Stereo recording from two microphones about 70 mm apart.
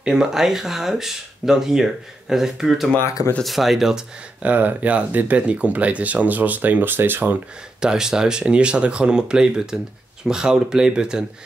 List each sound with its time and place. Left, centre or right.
0.0 s speech: centre
4.4 s speech: right
7.8 s speech: centre